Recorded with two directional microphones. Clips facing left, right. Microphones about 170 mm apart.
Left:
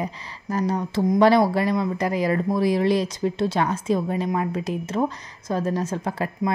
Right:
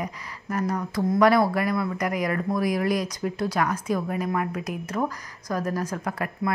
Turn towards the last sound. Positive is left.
turn(degrees=25)  # may be behind; listen again after turning